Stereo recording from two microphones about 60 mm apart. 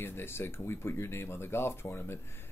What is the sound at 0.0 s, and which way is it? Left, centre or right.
Speech, left.